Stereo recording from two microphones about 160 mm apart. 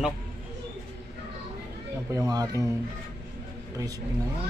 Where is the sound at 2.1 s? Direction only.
20° right (ahead or behind).